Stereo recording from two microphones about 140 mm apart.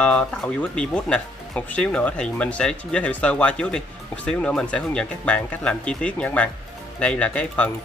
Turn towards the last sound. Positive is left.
turn(degrees=10)  # may be behind; listen again after turning